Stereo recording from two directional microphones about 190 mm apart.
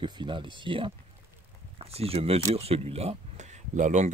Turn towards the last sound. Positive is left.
turn(degrees=-40)  # may be behind; listen again after turning